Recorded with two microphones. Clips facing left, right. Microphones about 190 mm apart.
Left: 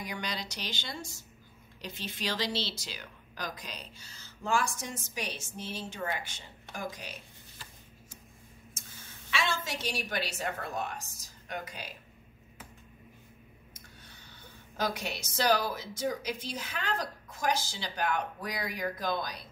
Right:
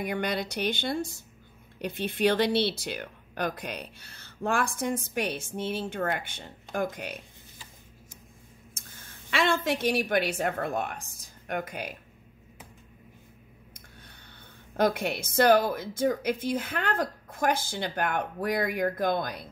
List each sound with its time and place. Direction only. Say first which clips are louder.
0.0 s speech: right 8 dB; 55° right (ahead or behind)
9.3 s speech: right 8 dB; 55° right (ahead or behind)
14.8 s speech: right 8 dB; 55° right (ahead or behind)